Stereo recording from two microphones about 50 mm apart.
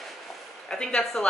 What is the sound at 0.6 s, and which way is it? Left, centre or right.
Speech, centre.